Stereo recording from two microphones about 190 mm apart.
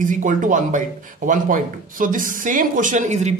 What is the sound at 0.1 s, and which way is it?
Speech, 40° right (ahead or behind).